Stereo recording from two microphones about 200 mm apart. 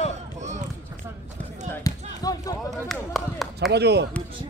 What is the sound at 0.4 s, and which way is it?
Run, 35° right (ahead or behind).